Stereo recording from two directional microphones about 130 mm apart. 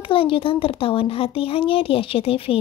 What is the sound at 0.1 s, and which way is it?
Speech, 45° left (ahead or behind).